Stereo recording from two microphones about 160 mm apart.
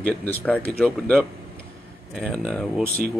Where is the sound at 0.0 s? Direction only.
10° left (ahead or behind).